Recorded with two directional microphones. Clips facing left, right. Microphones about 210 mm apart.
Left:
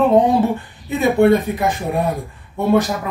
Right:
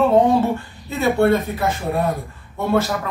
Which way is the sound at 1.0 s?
15° left (ahead or behind).